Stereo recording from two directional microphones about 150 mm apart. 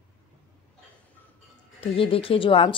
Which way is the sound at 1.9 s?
40° left (ahead or behind).